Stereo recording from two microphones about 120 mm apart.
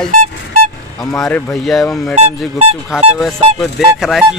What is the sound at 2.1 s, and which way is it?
Speech, 55° right (ahead or behind).